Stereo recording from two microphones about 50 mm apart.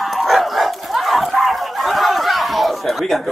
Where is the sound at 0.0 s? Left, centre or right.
Centre.